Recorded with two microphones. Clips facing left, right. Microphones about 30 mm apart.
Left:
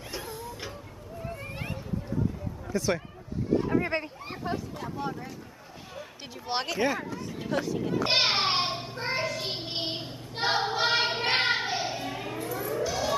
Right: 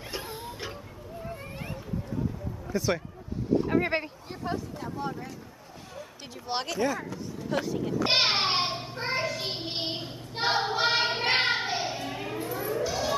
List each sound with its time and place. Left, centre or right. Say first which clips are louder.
0.2 s a sound: even; right
2.7 s speech: even; centre
4.5 s speech: right 1 dB; centre
7.5 s speech: even; centre
8.0 s child singing: right 1 dB; centre
12.5 s a sound: even; centre